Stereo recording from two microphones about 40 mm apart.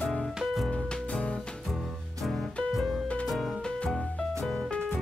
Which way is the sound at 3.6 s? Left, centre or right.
Left.